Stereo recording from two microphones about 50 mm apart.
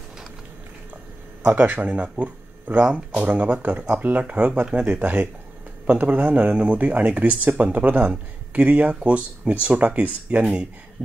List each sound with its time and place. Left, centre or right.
1.4 s speech: right